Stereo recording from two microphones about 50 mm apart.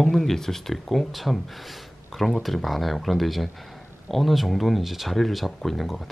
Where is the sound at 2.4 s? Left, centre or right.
Centre.